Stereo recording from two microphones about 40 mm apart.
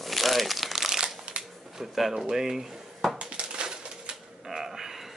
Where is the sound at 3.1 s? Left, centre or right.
Right.